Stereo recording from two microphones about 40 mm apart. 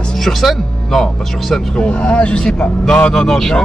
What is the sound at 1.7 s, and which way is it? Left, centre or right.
Speech, left.